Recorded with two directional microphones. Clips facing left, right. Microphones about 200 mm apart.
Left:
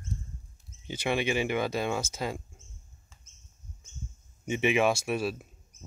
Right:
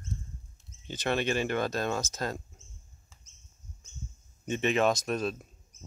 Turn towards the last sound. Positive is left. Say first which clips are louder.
# left 1 dB
turn(degrees=10)  # may be behind; listen again after turning